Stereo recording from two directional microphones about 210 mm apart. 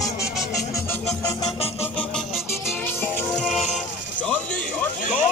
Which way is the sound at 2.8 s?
10° left (ahead or behind).